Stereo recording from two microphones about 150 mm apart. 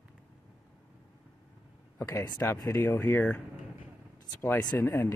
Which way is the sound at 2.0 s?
20° left (ahead or behind).